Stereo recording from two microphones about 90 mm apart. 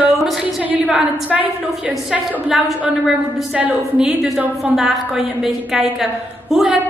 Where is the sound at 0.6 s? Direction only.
20° right (ahead or behind).